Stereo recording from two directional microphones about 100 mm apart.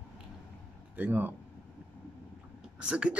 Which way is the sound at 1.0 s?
20° right (ahead or behind).